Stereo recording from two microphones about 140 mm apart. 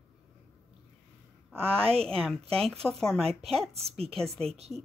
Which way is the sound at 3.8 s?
45° right (ahead or behind).